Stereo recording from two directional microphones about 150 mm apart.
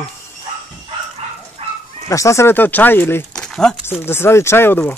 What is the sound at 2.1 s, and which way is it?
Speech, 20° left (ahead or behind).